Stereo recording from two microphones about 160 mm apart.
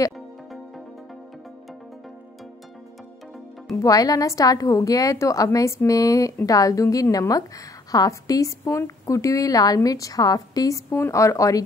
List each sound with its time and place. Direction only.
3.7 s a woman's voice: 20° left (ahead or behind)